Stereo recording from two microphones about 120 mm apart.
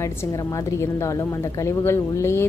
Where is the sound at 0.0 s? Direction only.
25° left (ahead or behind).